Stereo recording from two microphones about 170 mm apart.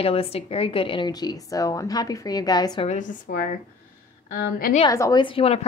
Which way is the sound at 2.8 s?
50° left (ahead or behind).